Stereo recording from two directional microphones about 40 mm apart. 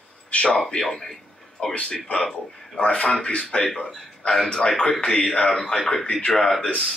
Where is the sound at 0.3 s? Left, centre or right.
Left.